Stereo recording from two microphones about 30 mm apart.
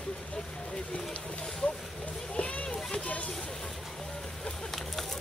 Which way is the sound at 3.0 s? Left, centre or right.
Left.